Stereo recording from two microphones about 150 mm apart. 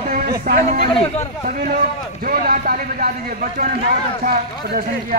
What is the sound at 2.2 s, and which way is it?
Speech, 70° right (ahead or behind).